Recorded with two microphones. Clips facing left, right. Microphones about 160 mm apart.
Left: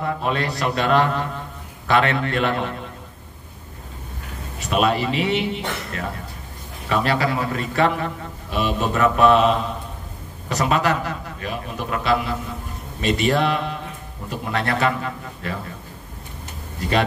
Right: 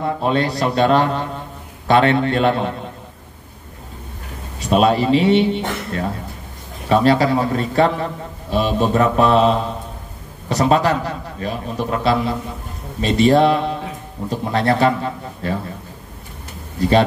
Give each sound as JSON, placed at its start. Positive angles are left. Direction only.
{"t": 0.0, "sound": "a man's voice", "side_deg": -30}
{"t": 4.6, "sound": "a man's voice", "side_deg": -35}